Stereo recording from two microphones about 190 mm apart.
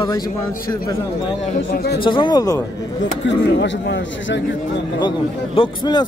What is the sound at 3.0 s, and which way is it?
Speech, 70° left (ahead or behind).